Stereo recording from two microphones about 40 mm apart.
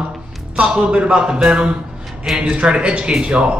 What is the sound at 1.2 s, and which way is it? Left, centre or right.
Speech, centre.